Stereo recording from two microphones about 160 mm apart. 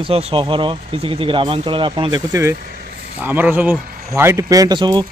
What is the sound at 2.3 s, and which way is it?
Speech, 20° right (ahead or behind).